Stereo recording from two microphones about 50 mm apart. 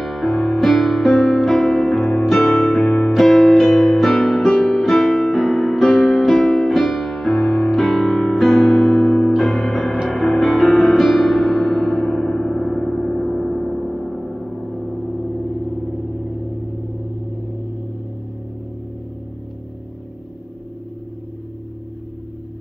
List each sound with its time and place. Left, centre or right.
0.0 s music: centre
2.8 s music: centre
12.7 s gong: centre